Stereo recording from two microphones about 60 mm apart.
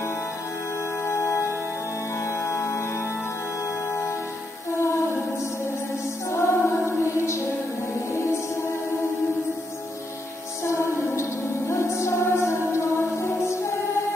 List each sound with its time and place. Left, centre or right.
1.0 s music: left
4.7 s music: left
6.3 s music: left
10.6 s music: left